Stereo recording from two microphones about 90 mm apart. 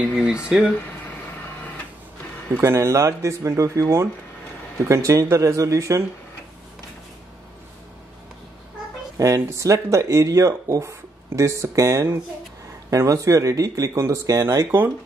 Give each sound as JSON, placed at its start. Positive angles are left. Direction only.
{"t": 0.1, "sound": "speech", "side_deg": -10}
{"t": 2.5, "sound": "speech", "side_deg": -30}
{"t": 9.2, "sound": "speech", "side_deg": -35}